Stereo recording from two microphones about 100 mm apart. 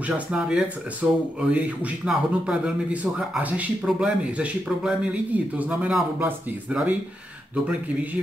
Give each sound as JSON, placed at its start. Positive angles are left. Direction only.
{"t": 0.0, "sound": "speech", "side_deg": -10}